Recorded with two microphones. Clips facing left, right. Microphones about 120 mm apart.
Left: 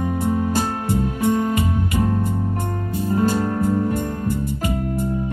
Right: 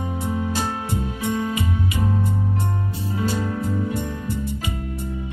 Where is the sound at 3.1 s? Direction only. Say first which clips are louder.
Left 5 dB; 45° left (ahead or behind).